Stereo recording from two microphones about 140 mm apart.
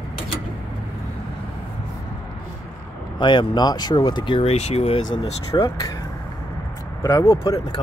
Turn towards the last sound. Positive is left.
turn(degrees=35)  # may be behind; listen again after turning